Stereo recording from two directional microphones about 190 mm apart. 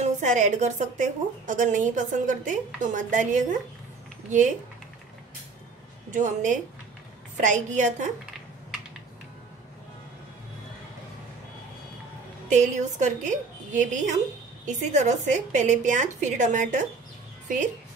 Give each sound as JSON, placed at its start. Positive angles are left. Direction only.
{"t": 0.0, "sound": "a woman's voice", "side_deg": -40}
{"t": 6.1, "sound": "a woman's voice", "side_deg": -40}
{"t": 12.4, "sound": "a woman's voice", "side_deg": -40}